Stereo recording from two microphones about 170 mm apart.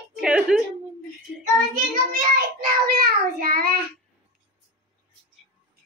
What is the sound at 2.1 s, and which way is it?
Child singing, 60° right (ahead or behind).